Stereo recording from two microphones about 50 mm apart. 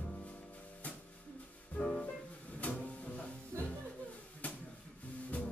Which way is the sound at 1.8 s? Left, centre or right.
Left.